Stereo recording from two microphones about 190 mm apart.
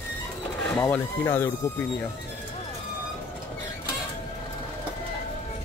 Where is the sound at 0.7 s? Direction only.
10° left (ahead or behind).